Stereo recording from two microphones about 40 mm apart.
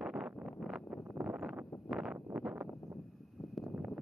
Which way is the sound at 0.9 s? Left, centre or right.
Centre.